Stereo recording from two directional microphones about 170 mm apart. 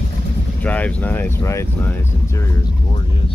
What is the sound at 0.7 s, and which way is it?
Speech, 10° left (ahead or behind).